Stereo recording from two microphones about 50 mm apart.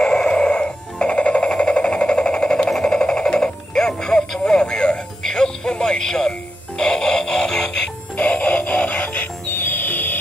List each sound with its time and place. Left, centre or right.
0.0 s music: centre
1.5 s a sound: left
2.8 s music: centre
8.2 s music: left
9.2 s music: left